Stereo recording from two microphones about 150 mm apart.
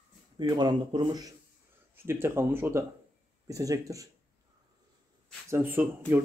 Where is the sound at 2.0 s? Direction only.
15° right (ahead or behind).